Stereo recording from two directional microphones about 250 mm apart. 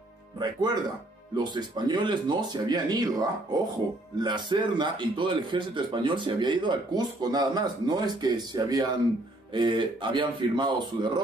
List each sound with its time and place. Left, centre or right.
0.4 s a man's voice: centre